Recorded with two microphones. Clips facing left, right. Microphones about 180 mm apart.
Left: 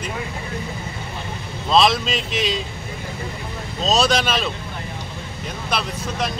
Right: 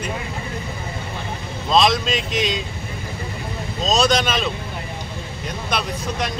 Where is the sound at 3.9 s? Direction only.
5° left (ahead or behind).